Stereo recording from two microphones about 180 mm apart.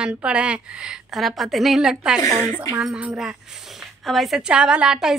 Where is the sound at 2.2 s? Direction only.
20° left (ahead or behind).